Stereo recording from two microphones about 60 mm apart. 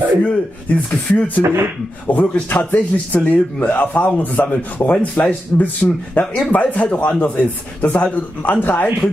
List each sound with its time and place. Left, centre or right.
0.2 s a man's voice: left
1.4 s speech: right
2.0 s a man's voice: left